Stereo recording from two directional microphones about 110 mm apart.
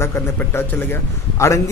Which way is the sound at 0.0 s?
25° left (ahead or behind).